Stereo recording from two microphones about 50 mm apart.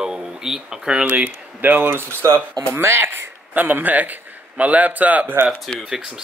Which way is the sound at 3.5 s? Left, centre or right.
Right.